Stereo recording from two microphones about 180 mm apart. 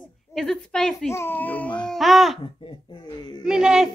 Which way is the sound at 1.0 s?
15° left (ahead or behind).